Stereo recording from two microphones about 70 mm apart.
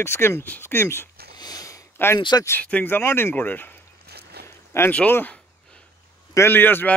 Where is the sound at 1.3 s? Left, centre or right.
Left.